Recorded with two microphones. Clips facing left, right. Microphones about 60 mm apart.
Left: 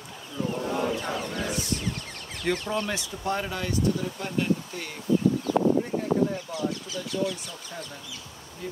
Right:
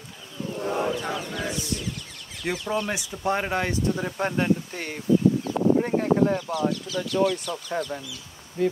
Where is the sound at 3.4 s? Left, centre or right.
Right.